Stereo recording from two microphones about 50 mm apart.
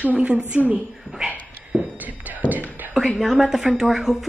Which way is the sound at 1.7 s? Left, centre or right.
Right.